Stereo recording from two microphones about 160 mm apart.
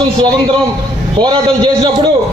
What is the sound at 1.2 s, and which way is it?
Speech, 30° right (ahead or behind).